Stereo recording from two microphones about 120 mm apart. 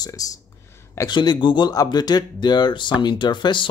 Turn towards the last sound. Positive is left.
turn(degrees=40)  # may be behind; listen again after turning